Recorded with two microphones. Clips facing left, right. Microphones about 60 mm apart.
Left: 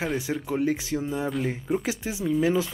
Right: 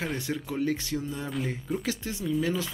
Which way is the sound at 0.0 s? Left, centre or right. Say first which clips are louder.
Left 4 dB; centre.